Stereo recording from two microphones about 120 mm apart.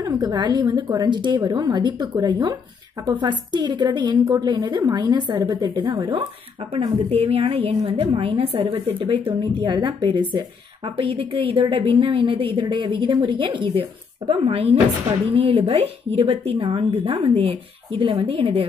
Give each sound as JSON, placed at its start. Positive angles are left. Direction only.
{"t": 0.2, "sound": "a woman's voice", "side_deg": -35}
{"t": 7.1, "sound": "a woman's voice", "side_deg": -55}
{"t": 11.0, "sound": "a woman's voice", "side_deg": -50}